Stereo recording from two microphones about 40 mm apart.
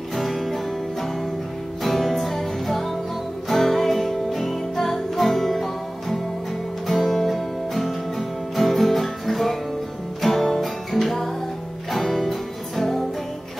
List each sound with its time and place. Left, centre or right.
0.1 s music: centre
1.8 s music: centre